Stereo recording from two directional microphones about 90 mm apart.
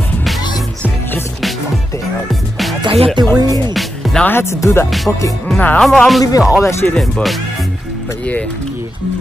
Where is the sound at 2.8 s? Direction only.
90° right.